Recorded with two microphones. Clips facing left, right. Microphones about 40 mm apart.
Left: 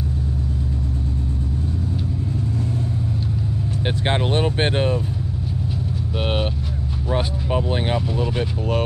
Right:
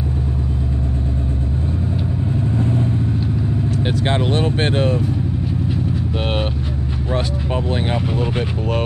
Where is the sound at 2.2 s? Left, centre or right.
Right.